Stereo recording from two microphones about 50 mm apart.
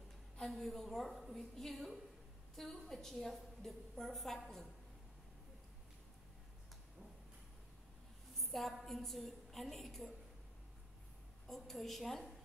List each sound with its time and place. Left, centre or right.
0.4 s a woman's voice: centre
8.4 s a sound: centre
8.8 s a woman's voice: centre
11.4 s a woman's voice: centre